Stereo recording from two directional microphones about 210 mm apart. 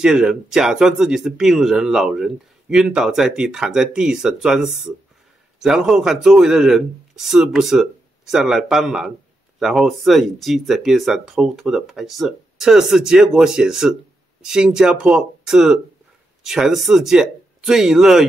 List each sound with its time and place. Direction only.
0.0 s speech: 5° right (ahead or behind)